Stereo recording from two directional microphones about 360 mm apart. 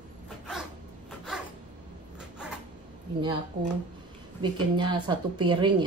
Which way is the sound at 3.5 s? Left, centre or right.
Right.